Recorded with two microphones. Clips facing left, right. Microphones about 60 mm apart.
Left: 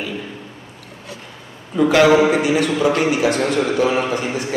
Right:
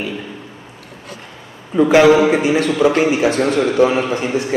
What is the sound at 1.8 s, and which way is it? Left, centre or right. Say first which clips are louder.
A man's voice: right 2 dB; centre.